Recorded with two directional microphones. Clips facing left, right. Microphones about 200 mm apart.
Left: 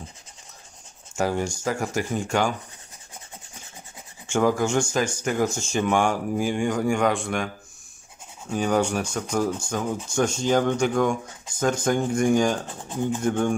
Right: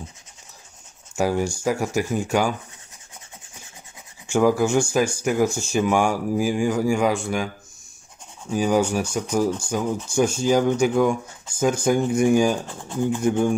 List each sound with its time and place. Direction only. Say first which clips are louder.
1.1 s speech: right 3 dB; 10° right (ahead or behind)
4.3 s speech: right 3 dB; 10° right (ahead or behind)
8.5 s speech: right 2 dB; 5° right (ahead or behind)
12.6 s speech: right 3 dB; 15° left (ahead or behind)
13.2 s speech: right 3 dB; 10° right (ahead or behind)